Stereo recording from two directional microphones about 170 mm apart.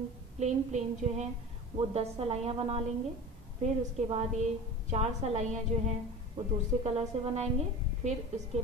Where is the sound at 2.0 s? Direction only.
35° right (ahead or behind).